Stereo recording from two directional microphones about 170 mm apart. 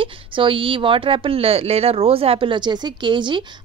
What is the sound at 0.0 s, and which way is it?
Speech, 30° right (ahead or behind).